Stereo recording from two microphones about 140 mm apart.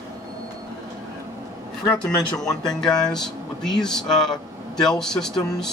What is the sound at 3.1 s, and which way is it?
Speech, 5° left (ahead or behind).